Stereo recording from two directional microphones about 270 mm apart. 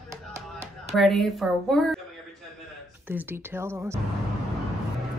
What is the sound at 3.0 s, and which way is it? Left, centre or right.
Speech, centre.